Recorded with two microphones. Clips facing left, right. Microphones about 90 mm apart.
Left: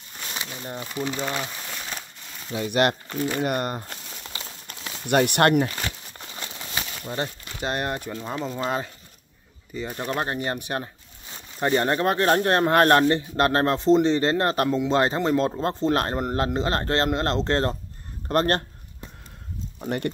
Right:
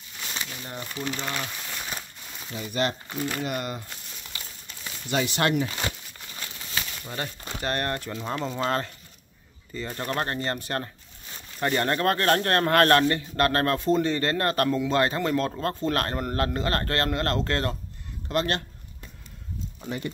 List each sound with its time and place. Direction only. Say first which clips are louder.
0.3 s speech: left 3 dB; 15° left (ahead or behind)
1.8 s crumpling: even; 5° right (ahead or behind)
2.5 s speech: left 6 dB; 70° left (ahead or behind)
3.4 s speech: left 5 dB; 50° left (ahead or behind)
4.3 s crumpling: left 4 dB; 25° left (ahead or behind)
4.8 s speech: left 6 dB; 60° left (ahead or behind)
6.3 s crumpling: left 2 dB; 25° left (ahead or behind)
7.2 s a man's voice: left 2 dB; 25° left (ahead or behind)
8.1 s a man's voice: even; 5° left (ahead or behind); by 17.7 s 30° left (ahead or behind)
18.3 s speech: left 4 dB; 45° left (ahead or behind)